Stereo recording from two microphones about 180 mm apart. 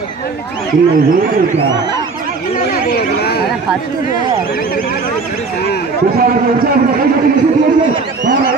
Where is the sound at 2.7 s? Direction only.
60° left (ahead or behind).